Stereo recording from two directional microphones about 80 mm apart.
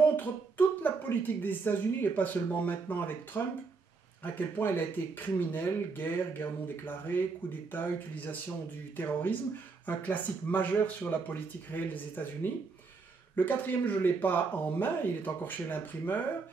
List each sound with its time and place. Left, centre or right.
0.0 s a woman's voice: left